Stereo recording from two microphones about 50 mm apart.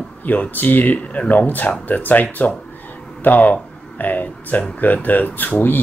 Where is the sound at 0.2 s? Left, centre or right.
Left.